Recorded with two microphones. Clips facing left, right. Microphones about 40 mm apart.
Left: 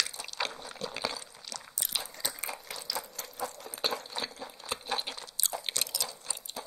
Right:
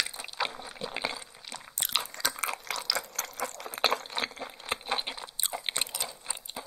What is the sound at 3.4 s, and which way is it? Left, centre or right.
Crunch, right.